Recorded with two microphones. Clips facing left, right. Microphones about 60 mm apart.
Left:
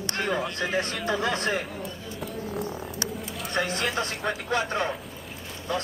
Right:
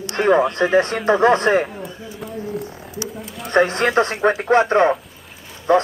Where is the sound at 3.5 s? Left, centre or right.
Right.